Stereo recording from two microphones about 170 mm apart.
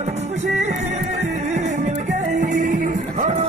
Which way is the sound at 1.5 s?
45° right (ahead or behind).